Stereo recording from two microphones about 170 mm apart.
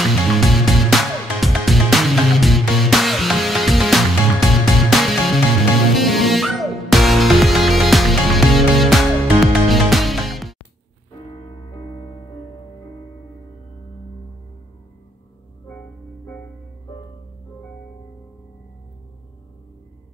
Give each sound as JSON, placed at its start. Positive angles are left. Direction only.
{"t": 0.0, "sound": "music", "side_deg": 0}
{"t": 11.2, "sound": "music", "side_deg": 30}